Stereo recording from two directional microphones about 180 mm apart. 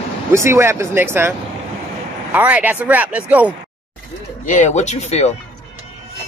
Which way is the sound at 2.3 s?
10° right (ahead or behind).